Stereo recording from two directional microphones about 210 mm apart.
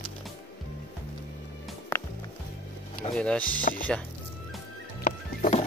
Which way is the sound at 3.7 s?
35° left (ahead or behind).